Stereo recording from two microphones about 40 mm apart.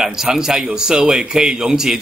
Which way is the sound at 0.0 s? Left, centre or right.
Centre.